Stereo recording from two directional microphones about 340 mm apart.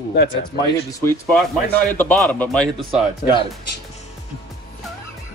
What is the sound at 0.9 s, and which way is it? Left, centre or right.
Speech, centre.